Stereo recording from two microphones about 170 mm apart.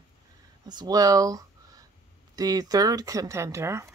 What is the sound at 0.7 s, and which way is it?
Speech, 25° right (ahead or behind).